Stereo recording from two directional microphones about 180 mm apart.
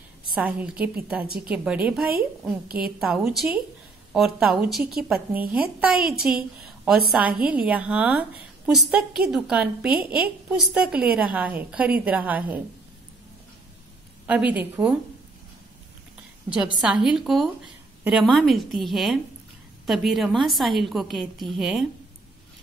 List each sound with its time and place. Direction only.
0.4 s a woman's voice: 10° right (ahead or behind)
1.2 s a woman's voice: 55° right (ahead or behind)
1.5 s a woman's voice: 5° right (ahead or behind)
14.2 s a woman's voice: 10° right (ahead or behind)
16.8 s a woman's voice: 5° right (ahead or behind)